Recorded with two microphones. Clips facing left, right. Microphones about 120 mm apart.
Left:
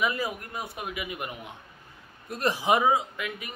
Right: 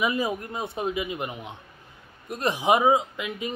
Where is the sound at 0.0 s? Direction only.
20° right (ahead or behind).